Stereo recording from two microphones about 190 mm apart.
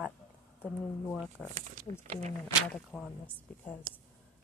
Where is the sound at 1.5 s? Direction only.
40° right (ahead or behind).